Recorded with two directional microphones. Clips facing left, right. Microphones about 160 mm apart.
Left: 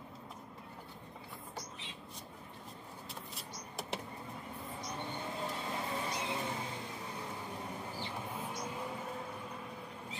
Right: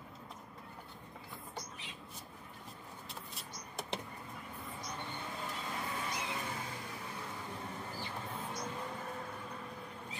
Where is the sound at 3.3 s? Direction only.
Centre (ahead or behind).